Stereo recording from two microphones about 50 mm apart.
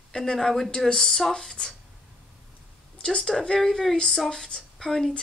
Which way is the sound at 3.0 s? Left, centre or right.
Centre.